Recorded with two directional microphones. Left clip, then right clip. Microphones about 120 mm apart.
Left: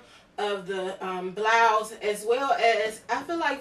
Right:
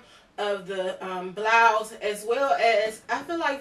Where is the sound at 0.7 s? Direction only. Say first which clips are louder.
Right 1 dB; 15° left (ahead or behind).